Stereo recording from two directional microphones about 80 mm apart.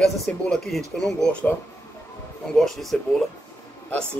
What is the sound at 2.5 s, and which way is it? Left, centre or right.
Speech, centre.